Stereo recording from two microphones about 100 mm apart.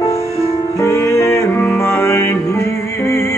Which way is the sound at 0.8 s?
30° left (ahead or behind).